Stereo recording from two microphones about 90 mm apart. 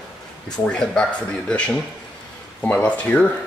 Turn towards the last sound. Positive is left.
turn(degrees=15)  # may be behind; listen again after turning